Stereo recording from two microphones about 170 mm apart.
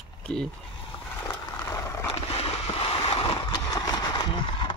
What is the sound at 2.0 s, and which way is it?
Boat, 35° left (ahead or behind).